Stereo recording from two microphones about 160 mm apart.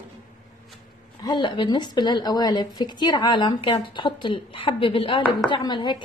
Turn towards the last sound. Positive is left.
turn(degrees=30)  # may be behind; listen again after turning